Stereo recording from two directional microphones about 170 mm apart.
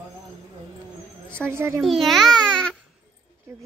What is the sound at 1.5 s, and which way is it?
Speech, 15° right (ahead or behind).